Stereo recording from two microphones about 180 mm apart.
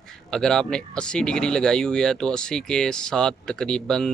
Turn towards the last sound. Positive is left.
turn(degrees=5)  # may be behind; listen again after turning